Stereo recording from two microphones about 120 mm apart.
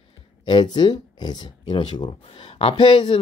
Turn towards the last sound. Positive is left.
turn(degrees=50)  # may be behind; listen again after turning